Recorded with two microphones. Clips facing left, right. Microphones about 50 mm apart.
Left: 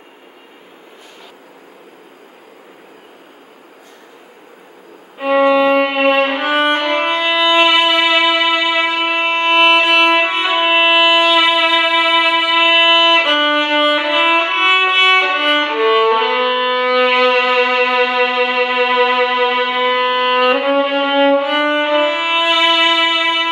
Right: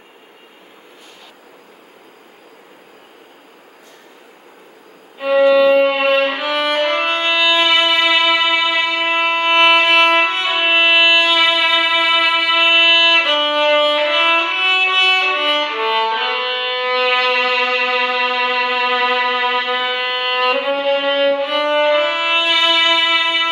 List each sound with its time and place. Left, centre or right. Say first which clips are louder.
5.2 s violin: even; left; by 10.2 s centre
10.2 s music: left 2 dB; centre
12.5 s violin: left 2 dB; centre
13.7 s music: left 1 dB; centre
14.7 s violin: left 3 dB; centre
15.2 s music: left 2 dB; centre
17.1 s music: left 3 dB; centre
19.5 s violin: left 3 dB; centre
20.7 s music: left 2 dB; left
22.1 s music: left 1 dB; centre
22.5 s music: left 3 dB; centre
23.0 s music: left 1 dB; centre